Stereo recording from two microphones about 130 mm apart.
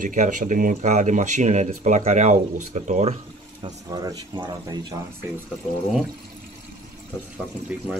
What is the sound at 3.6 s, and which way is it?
Speech, 30° right (ahead or behind).